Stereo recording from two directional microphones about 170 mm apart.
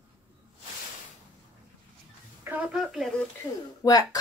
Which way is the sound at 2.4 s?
5° right (ahead or behind).